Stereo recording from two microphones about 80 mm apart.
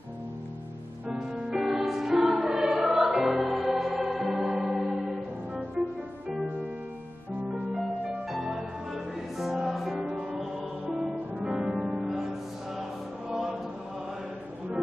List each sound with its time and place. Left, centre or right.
1.6 s music: centre
7.7 s music: centre
10.0 s music: centre
11.3 s music: centre
13.3 s choir: centre